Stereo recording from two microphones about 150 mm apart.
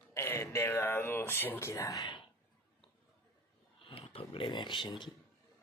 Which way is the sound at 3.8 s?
40° left (ahead or behind).